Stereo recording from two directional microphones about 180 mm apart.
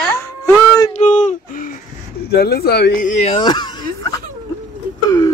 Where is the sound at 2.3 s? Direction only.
60° left (ahead or behind); by 3.3 s 45° left (ahead or behind).